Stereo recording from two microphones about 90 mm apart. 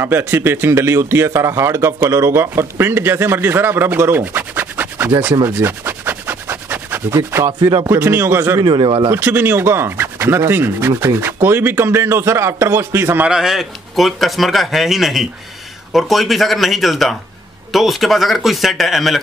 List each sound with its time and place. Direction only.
0.0 s a man's voice: 25° right (ahead or behind)
5.5 s a sound: 25° right (ahead or behind)
7.1 s a man's voice: 35° right (ahead or behind)
8.6 s speech: 60° right (ahead or behind)
9.1 s a man's voice: 25° right (ahead or behind)
13.2 s speech: 5° right (ahead or behind)